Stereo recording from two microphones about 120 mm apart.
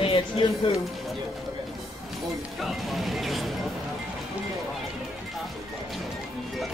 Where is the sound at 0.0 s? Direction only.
50° left (ahead or behind).